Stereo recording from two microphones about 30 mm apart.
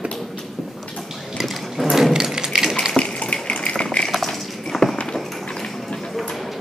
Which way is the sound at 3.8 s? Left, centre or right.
Left.